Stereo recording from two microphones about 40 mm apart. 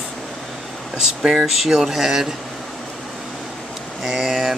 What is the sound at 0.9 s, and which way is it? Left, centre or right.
Speech, centre.